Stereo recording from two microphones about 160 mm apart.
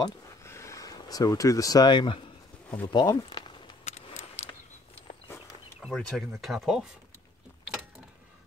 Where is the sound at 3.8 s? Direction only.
40° left (ahead or behind).